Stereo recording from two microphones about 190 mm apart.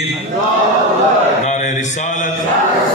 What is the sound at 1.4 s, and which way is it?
Speech, 40° left (ahead or behind).